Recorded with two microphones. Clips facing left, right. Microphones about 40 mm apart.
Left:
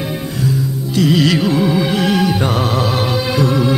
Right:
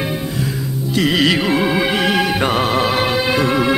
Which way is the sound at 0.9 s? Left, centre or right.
Right.